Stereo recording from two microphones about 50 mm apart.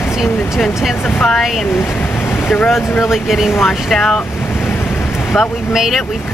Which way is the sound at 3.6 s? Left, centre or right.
Centre.